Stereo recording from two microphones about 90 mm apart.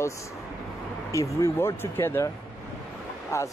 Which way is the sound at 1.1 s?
35° left (ahead or behind).